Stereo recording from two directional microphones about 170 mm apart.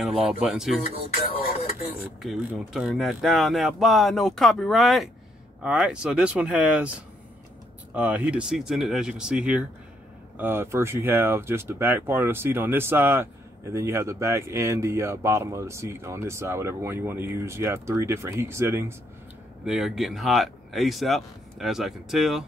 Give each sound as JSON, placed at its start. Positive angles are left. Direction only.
{"t": 0.0, "sound": "speech", "side_deg": 0}
{"t": 2.2, "sound": "speech", "side_deg": 0}
{"t": 7.9, "sound": "speech", "side_deg": -10}
{"t": 19.6, "sound": "speech", "side_deg": -5}